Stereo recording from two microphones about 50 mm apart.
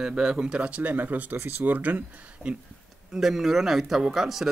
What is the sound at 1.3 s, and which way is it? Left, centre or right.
Speech, right.